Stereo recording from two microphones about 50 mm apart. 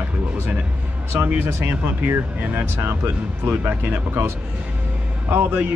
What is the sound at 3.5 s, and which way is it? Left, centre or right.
Speech, right.